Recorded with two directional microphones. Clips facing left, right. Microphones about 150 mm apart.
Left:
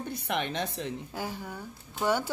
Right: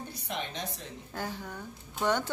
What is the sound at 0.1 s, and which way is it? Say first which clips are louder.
Speech: left 8 dB; 60° left (ahead or behind).